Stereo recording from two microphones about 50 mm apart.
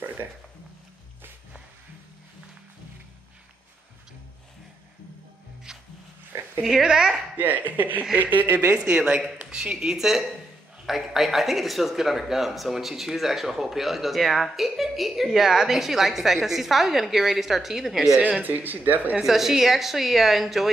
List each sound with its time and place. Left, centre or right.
5.7 s music: centre
6.6 s speech: centre
7.3 s speech: right
8.7 s speech: right; by 18.2 s centre
18.4 s speech: right
19.2 s speech: centre